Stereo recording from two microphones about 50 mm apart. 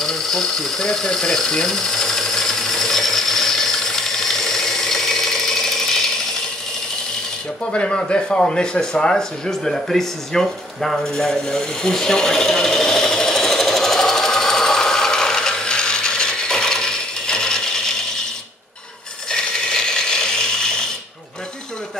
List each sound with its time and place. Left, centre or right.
0.0 s tools: centre
7.7 s a sound: centre
19.3 s ratchet: centre